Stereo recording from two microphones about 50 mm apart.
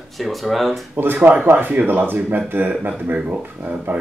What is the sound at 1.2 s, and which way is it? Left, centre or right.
Speech, right.